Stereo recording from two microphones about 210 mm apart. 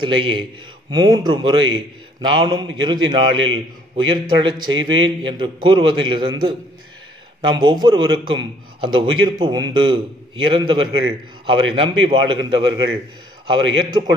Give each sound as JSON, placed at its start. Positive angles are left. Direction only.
{"t": 0.0, "sound": "a man's voice", "side_deg": -25}